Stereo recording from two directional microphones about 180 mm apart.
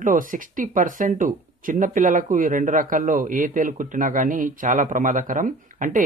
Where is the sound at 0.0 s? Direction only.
50° right (ahead or behind).